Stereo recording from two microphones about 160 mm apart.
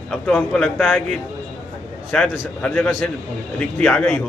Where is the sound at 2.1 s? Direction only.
5° left (ahead or behind).